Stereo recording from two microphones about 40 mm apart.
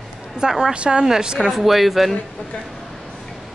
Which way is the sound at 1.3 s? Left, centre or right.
Centre.